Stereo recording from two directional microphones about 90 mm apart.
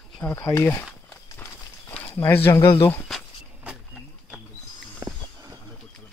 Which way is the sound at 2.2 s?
25° left (ahead or behind).